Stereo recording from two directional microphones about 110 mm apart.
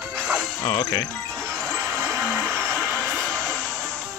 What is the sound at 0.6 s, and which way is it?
Speech, 35° left (ahead or behind).